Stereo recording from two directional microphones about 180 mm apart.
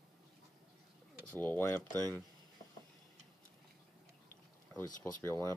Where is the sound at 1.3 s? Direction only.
10° left (ahead or behind).